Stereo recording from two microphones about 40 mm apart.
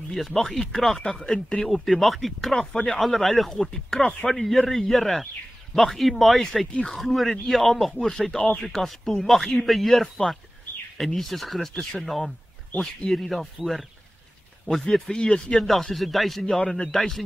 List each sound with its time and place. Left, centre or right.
0.1 s speech: centre
1.7 s speech: centre
2.5 s speech: centre
8.6 s speech: centre
14.7 s speech: centre
15.5 s speech: centre
16.5 s speech: left
16.9 s speech: centre